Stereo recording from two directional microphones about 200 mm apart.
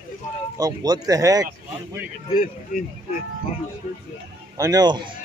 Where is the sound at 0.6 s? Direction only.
20° right (ahead or behind).